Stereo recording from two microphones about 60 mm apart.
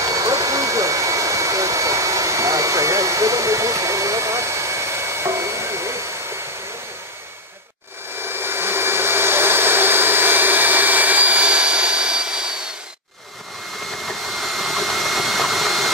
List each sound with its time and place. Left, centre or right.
0.0 s hair dryer: right
8.2 s hair dryer: right; by 12.4 s centre
14.0 s a sound: centre